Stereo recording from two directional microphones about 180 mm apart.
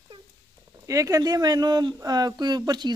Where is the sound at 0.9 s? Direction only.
20° right (ahead or behind).